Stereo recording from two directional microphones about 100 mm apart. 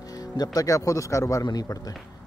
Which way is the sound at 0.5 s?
35° left (ahead or behind).